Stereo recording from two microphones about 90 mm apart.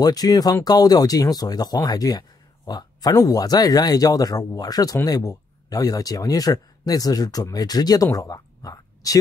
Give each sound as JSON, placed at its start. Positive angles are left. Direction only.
{"t": 0.0, "sound": "speech", "side_deg": 45}